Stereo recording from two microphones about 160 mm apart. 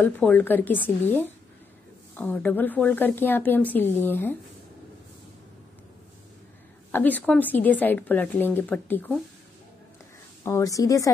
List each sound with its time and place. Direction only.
0.0 s speech: 10° left (ahead or behind)
6.9 s speech: 10° left (ahead or behind)
10.4 s a woman's voice: 20° left (ahead or behind)